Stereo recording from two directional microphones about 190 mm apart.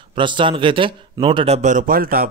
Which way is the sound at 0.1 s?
25° right (ahead or behind).